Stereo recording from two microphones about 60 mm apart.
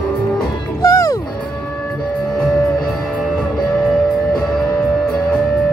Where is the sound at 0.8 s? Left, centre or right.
Left.